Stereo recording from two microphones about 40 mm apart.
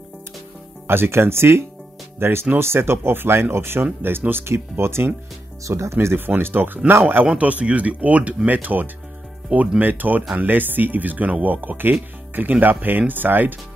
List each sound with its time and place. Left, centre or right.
0.8 s speech: right
3.8 s speech: right
4.3 s speech: right
5.9 s speech: right
7.2 s speech: right
8.5 s speech: right